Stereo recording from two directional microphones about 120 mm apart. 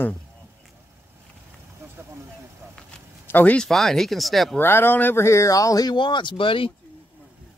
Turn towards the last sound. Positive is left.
turn(degrees=45)  # may be behind; listen again after turning